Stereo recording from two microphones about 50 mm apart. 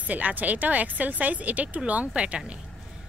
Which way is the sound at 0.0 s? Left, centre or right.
Right.